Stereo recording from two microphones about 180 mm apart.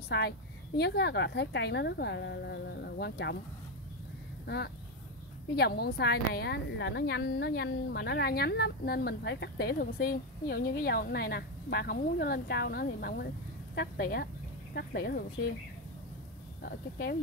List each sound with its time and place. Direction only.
0.1 s a woman's voice: 65° left (ahead or behind)
5.6 s a woman's voice: 60° left (ahead or behind)
16.6 s a woman's voice: 60° left (ahead or behind)